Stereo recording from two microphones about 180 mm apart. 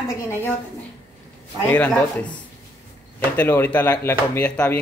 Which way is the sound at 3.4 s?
10° left (ahead or behind).